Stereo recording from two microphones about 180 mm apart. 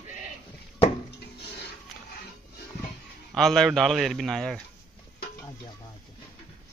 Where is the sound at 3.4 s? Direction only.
Centre (ahead or behind).